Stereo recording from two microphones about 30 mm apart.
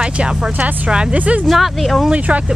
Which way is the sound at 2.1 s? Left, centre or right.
Right.